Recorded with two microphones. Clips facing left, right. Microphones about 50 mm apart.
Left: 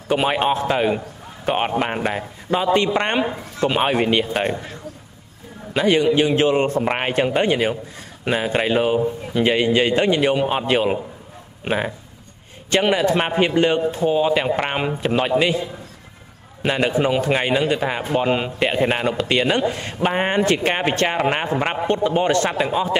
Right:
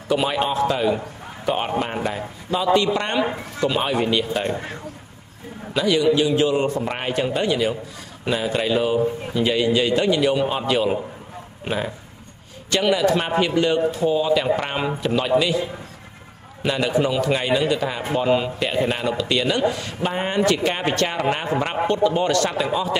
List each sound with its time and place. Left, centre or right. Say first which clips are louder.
0.1 s a man's voice: left 2 dB; left
5.7 s a man's voice: left 1 dB; left
16.6 s a man's voice: left 2 dB; left